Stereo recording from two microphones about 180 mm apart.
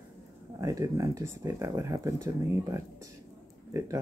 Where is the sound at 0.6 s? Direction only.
20° right (ahead or behind).